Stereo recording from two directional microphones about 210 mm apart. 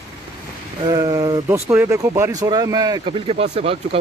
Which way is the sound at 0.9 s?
20° right (ahead or behind).